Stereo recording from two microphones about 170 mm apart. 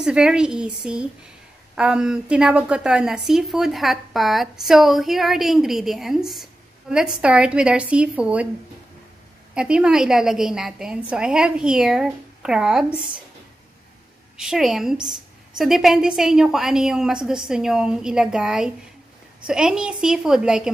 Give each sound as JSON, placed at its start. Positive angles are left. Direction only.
{"t": 0.0, "sound": "a woman's voice", "side_deg": -5}
{"t": 9.5, "sound": "a woman's voice", "side_deg": -5}
{"t": 14.3, "sound": "a woman's voice", "side_deg": -5}